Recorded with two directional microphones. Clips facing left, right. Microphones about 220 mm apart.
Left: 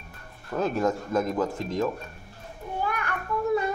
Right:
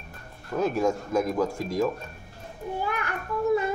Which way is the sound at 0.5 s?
10° right (ahead or behind).